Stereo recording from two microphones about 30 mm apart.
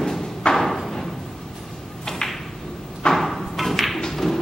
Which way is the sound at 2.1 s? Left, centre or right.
Centre.